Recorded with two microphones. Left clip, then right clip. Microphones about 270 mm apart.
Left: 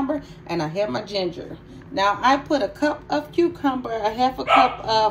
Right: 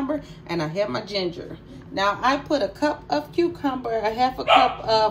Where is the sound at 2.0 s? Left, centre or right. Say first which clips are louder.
Left 3 dB; centre.